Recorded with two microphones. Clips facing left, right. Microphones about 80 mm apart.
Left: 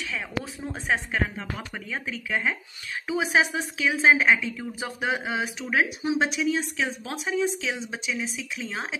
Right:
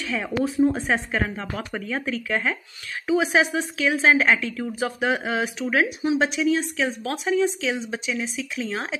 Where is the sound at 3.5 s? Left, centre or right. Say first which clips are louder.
Right 3 dB; right.